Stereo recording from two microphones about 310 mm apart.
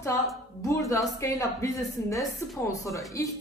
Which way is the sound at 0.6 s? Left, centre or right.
Centre.